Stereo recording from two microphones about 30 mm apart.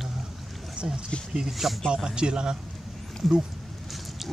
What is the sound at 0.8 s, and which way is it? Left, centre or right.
Speech, centre.